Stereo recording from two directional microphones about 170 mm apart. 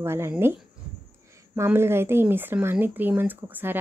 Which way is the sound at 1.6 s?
15° right (ahead or behind).